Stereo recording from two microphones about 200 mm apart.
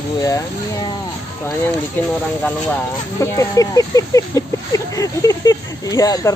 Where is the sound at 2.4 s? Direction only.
10° left (ahead or behind).